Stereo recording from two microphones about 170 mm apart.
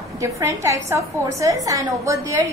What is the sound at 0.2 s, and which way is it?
A woman's voice, 15° right (ahead or behind).